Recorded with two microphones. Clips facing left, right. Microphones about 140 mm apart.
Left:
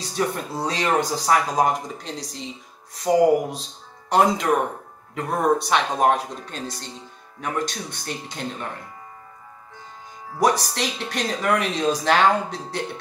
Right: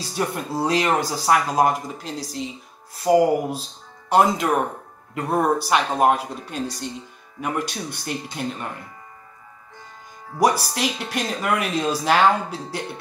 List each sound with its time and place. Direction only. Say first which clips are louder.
0.6 s speech: right 2 dB; 10° right (ahead or behind)
10.4 s speech: right 1 dB; 10° right (ahead or behind)